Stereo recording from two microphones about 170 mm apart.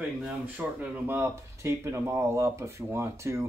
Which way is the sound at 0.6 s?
10° right (ahead or behind).